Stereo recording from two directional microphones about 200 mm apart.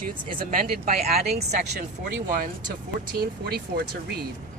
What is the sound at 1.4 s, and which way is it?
Speech, 55° right (ahead or behind).